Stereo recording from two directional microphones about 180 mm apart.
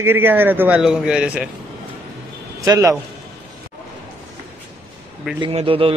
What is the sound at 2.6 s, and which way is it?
Speech, 15° right (ahead or behind).